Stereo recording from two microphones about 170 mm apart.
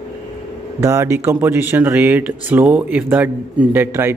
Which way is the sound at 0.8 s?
15° right (ahead or behind).